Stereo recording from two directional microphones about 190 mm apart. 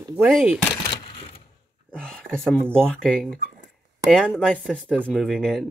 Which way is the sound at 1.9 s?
5° left (ahead or behind).